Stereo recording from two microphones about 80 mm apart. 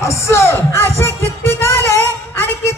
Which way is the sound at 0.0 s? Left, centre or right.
Left.